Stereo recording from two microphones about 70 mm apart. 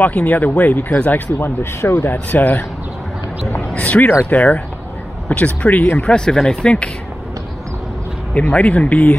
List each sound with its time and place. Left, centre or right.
0.0 s speech: left
2.3 s speech: left
6.0 s speech: centre
8.4 s speech: centre